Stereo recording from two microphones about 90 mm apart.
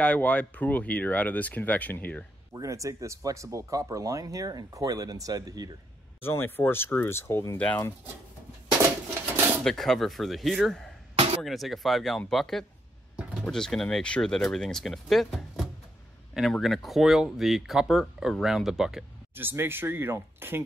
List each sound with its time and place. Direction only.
0.0 s speech: 15° left (ahead or behind)
2.5 s speech: 35° right (ahead or behind)
6.2 s speech: 25° left (ahead or behind)
7.5 s speech: 15° left (ahead or behind)
9.6 s speech: 5° left (ahead or behind)
13.1 s a sound: 10° right (ahead or behind)
13.4 s speech: 5° left (ahead or behind)
19.3 s speech: 25° right (ahead or behind)